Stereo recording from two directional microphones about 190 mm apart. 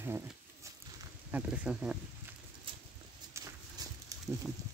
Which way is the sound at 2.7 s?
30° right (ahead or behind).